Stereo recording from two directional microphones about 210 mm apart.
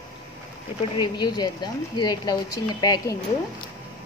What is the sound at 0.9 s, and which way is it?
A woman's voice, 20° left (ahead or behind).